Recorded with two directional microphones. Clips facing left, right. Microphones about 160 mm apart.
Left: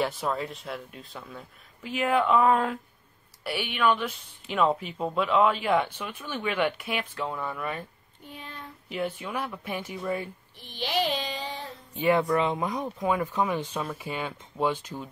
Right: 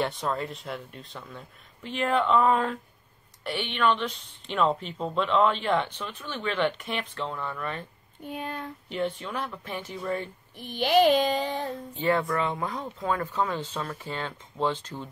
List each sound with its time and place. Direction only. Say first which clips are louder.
0.0 s a woman's voice: even; 5° left (ahead or behind)
8.3 s child singing: right 8 dB; 50° right (ahead or behind)
8.8 s a woman's voice: even; 5° left (ahead or behind)
10.6 s child singing: right 8 dB; 50° right (ahead or behind)
11.9 s a woman's voice: left 3 dB; 15° left (ahead or behind)